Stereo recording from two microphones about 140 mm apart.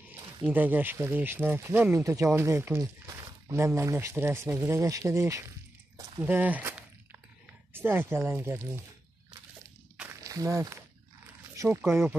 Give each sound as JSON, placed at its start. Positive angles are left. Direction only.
{"t": 0.5, "sound": "speech", "side_deg": -10}
{"t": 6.2, "sound": "a sound", "side_deg": -10}
{"t": 7.7, "sound": "speech", "side_deg": -15}
{"t": 10.2, "sound": "speech", "side_deg": -25}